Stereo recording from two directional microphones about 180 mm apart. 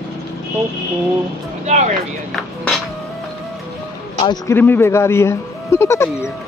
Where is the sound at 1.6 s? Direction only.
40° right (ahead or behind).